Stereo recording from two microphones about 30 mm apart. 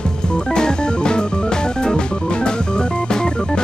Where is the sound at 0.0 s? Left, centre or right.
Left.